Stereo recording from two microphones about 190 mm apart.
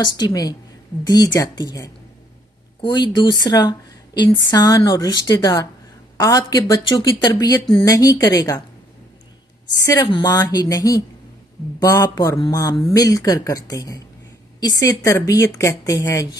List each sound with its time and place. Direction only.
0.0 s a woman's voice: 20° left (ahead or behind)
9.8 s a woman's voice: 20° left (ahead or behind)